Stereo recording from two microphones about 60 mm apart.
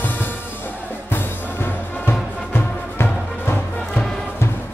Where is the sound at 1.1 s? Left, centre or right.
Left.